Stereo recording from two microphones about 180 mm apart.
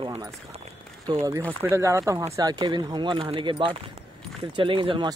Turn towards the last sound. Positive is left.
turn(degrees=-25)  # may be behind; listen again after turning